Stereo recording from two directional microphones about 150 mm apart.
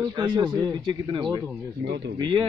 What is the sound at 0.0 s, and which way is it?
Speech, 30° right (ahead or behind).